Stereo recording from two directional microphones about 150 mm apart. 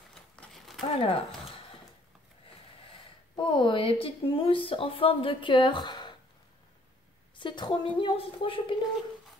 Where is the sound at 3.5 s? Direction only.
35° left (ahead or behind).